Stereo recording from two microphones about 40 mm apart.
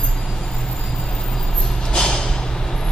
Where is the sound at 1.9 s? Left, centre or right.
Centre.